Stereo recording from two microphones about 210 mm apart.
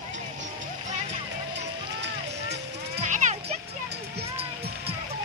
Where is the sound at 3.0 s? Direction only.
35° right (ahead or behind).